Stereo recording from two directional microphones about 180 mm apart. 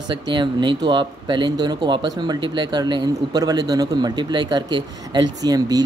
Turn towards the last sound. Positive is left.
turn(degrees=-20)  # may be behind; listen again after turning